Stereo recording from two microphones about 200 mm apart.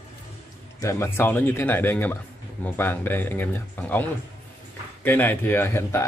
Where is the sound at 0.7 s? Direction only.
15° left (ahead or behind).